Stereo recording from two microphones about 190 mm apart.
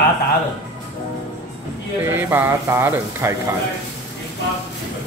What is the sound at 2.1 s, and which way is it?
Speech, 15° right (ahead or behind).